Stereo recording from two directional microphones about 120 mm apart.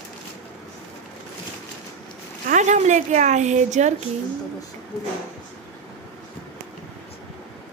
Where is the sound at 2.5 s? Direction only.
90° right.